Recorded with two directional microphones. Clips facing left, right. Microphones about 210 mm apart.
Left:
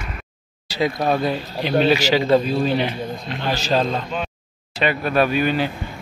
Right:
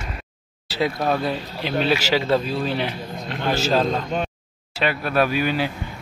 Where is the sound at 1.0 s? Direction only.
Centre (ahead or behind).